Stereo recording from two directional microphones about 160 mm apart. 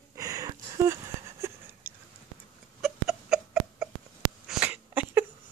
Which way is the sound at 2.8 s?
Centre (ahead or behind).